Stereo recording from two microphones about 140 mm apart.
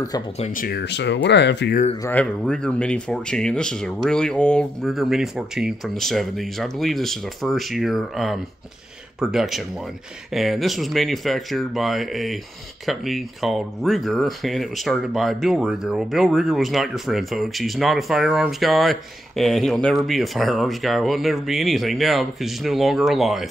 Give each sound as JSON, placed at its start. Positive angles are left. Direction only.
{"t": 0.5, "sound": "speech", "side_deg": 80}
{"t": 2.0, "sound": "speech", "side_deg": 10}